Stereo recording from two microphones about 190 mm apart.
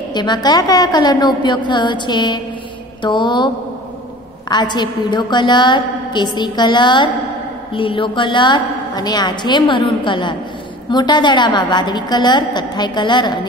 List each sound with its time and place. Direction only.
0.1 s a woman's voice: 25° left (ahead or behind)
4.5 s a woman's voice: 25° left (ahead or behind)